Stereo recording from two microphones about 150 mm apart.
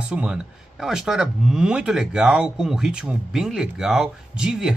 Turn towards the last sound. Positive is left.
turn(degrees=-5)  # may be behind; listen again after turning